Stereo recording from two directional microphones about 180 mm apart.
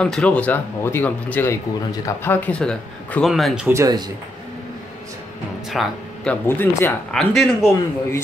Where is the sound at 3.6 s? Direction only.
20° right (ahead or behind).